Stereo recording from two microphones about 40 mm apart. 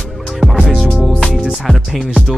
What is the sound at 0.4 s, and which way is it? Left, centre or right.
Music, centre.